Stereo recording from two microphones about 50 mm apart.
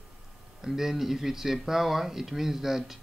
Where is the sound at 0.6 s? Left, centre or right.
Centre.